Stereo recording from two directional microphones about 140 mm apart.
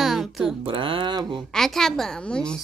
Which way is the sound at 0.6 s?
35° right (ahead or behind).